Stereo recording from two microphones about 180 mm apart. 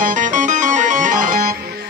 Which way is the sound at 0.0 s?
45° right (ahead or behind).